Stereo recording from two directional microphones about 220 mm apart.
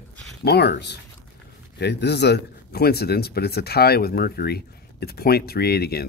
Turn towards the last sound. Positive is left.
turn(degrees=45)  # may be behind; listen again after turning